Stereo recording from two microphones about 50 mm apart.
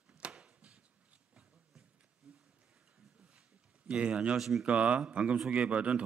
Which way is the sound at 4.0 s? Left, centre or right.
Right.